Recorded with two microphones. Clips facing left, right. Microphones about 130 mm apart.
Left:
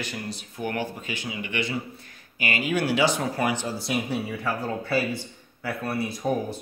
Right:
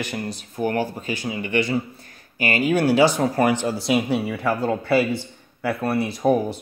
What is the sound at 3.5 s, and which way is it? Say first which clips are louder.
Speech: right 7 dB; 80° right.